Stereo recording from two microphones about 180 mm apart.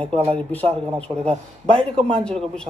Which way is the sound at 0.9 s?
5° left (ahead or behind).